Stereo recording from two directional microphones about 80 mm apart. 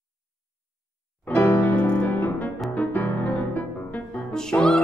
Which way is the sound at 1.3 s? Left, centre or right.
Left.